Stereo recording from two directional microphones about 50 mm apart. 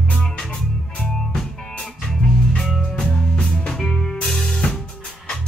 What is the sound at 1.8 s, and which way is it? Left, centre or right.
Music, centre.